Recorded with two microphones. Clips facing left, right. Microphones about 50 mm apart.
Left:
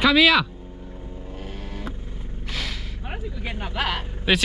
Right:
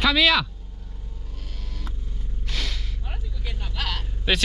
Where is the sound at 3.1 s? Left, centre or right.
Left.